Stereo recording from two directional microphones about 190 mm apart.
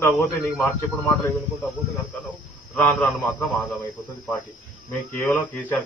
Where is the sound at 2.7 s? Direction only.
5° left (ahead or behind).